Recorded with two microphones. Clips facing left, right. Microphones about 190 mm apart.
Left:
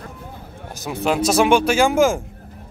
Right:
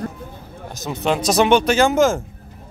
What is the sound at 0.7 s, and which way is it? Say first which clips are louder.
Speech: even; 10° left (ahead or behind).